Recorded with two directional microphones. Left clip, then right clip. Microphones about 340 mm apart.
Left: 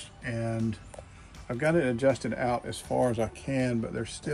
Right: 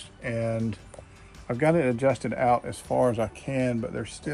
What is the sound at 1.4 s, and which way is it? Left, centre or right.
Speech, centre.